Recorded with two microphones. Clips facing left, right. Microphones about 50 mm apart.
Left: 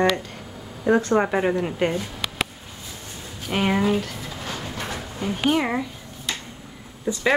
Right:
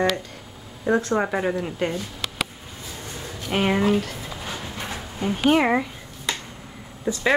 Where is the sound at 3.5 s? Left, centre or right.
Centre.